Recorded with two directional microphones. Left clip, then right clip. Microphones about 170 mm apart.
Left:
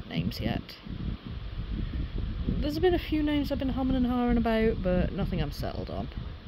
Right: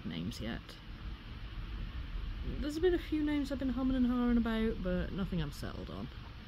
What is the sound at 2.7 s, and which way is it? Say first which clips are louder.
Speech: left 6 dB; 25° left (ahead or behind).